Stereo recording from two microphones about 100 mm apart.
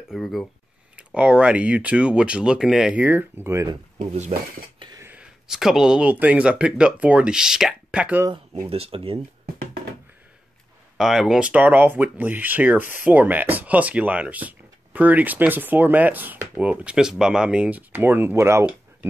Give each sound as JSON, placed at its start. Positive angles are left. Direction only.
{"t": 0.1, "sound": "speech", "side_deg": 0}
{"t": 0.9, "sound": "speech", "side_deg": -10}
{"t": 5.2, "sound": "speech", "side_deg": -5}
{"t": 8.6, "sound": "speech", "side_deg": -75}
{"t": 11.0, "sound": "speech", "side_deg": -5}